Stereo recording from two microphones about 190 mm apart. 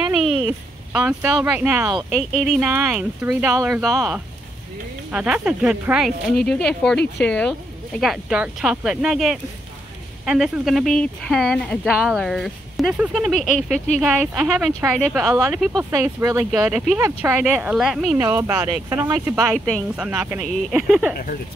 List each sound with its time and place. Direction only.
0.2 s speech: 5° right (ahead or behind)
3.9 s speech: 15° right (ahead or behind)
15.6 s speech: centre (ahead or behind)
15.9 s speech: 15° right (ahead or behind)
18.1 s speech: 15° right (ahead or behind)
19.3 s speech: centre (ahead or behind)
20.1 s speech: 15° right (ahead or behind)